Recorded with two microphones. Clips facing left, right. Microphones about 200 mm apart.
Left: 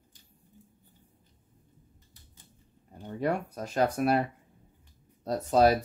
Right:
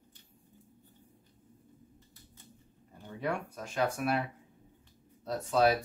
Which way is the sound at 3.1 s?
40° left (ahead or behind).